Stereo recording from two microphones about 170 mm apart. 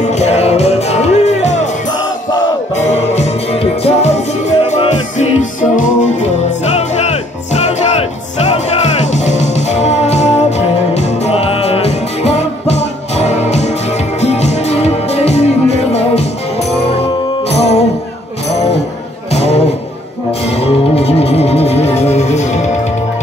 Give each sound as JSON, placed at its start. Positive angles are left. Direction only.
{"t": 0.1, "sound": "music", "side_deg": 40}
{"t": 2.9, "sound": "music", "side_deg": 40}
{"t": 17.5, "sound": "music", "side_deg": 35}
{"t": 19.3, "sound": "music", "side_deg": 40}